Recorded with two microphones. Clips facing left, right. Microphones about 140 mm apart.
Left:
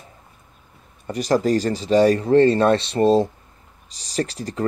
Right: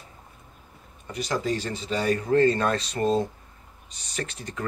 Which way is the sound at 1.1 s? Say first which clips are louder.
Left 9 dB; 40° left (ahead or behind).